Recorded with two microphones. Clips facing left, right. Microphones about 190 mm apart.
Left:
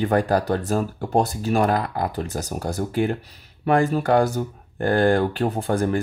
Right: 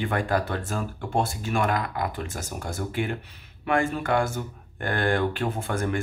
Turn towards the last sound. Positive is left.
turn(degrees=35)  # may be behind; listen again after turning